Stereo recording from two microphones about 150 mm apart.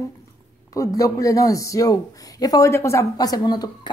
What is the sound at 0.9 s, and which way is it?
A man's voice, 25° left (ahead or behind).